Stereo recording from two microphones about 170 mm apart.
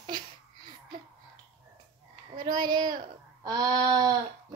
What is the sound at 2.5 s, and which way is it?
A woman's voice, 25° right (ahead or behind).